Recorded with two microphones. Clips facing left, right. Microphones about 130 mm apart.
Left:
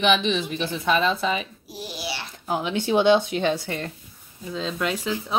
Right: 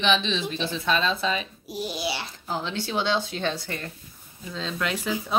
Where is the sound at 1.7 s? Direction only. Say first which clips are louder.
Right 6 dB; 20° right (ahead or behind).